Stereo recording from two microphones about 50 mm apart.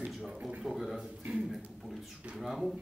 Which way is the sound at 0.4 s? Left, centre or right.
Right.